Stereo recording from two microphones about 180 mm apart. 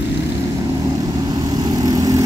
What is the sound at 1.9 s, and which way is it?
Vehicle, 20° right (ahead or behind).